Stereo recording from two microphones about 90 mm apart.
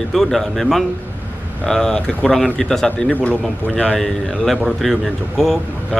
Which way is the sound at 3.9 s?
5° left (ahead or behind).